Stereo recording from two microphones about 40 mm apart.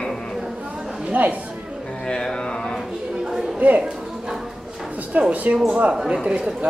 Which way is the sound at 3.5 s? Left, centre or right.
Right.